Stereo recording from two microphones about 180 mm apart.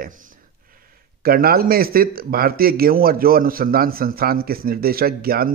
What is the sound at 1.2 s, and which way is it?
Speech, 55° right (ahead or behind).